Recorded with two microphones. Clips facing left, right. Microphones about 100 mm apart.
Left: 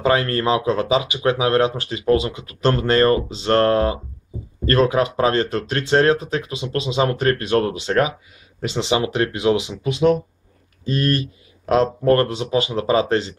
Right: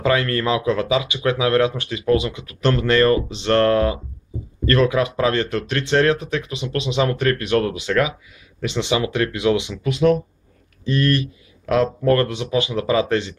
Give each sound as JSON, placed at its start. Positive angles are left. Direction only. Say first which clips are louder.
{"t": 0.0, "sound": "speech", "louder": "left 1 dB", "side_deg": 30}